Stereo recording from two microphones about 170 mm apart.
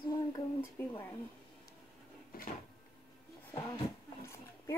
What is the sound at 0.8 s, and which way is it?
Speech, 15° left (ahead or behind).